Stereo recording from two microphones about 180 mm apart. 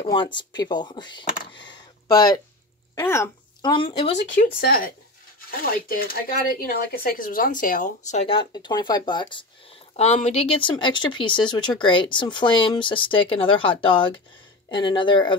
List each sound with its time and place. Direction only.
0.1 s speech: 25° left (ahead or behind)
1.7 s a sound: 20° left (ahead or behind)
3.0 s speech: 15° left (ahead or behind)
3.7 s speech: 30° left (ahead or behind)
4.2 s speech: 50° left (ahead or behind); by 9.5 s 25° left (ahead or behind)
9.9 s speech: 35° left (ahead or behind)